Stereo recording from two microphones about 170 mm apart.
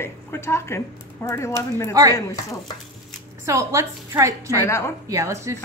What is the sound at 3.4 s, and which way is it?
A woman's voice, 15° right (ahead or behind).